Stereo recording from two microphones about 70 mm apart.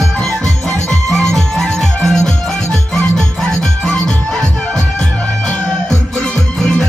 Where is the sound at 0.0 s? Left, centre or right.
Centre.